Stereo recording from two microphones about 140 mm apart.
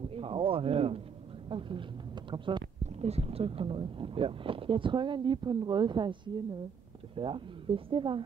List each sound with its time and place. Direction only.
0.1 s speech: 40° right (ahead or behind)
3.0 s speech: 45° right (ahead or behind)